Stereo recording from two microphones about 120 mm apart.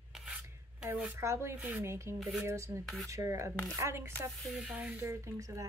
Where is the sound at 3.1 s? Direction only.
25° right (ahead or behind).